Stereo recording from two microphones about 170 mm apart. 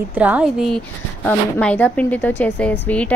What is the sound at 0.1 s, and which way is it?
Speech, 10° right (ahead or behind).